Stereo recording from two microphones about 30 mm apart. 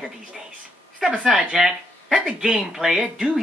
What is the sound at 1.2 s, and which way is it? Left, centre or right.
A man's voice, centre.